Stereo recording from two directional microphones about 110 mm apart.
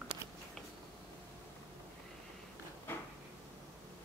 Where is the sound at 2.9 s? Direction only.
20° left (ahead or behind).